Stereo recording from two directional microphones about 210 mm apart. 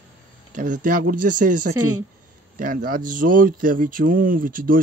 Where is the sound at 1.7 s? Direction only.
90° right.